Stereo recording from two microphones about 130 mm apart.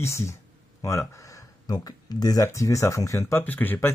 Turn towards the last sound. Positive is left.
turn(degrees=15)  # may be behind; listen again after turning